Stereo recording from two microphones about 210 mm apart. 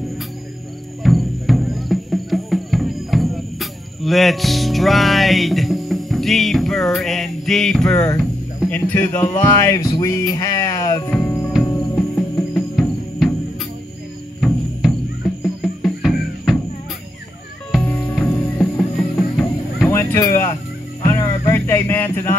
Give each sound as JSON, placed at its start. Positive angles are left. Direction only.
{"t": 1.0, "sound": "music", "side_deg": 0}
{"t": 8.2, "sound": "speech", "side_deg": 5}
{"t": 11.1, "sound": "music", "side_deg": 10}
{"t": 14.4, "sound": "music", "side_deg": 5}
{"t": 17.6, "sound": "music", "side_deg": 0}
{"t": 19.3, "sound": "a sound", "side_deg": 10}
{"t": 21.5, "sound": "speech", "side_deg": 10}